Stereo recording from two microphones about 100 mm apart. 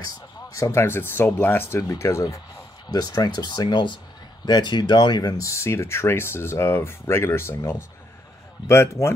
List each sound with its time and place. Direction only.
0.6 s speech: 25° left (ahead or behind); by 5.3 s 45° left (ahead or behind)
5.4 s speech: 30° left (ahead or behind)